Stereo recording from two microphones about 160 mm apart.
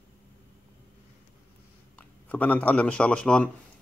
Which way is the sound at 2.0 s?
10° left (ahead or behind).